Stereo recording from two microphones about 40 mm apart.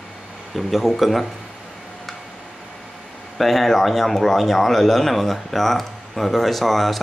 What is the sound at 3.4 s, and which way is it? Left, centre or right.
Speech, centre.